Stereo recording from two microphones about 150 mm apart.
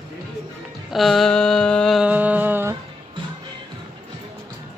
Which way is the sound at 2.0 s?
10° right (ahead or behind).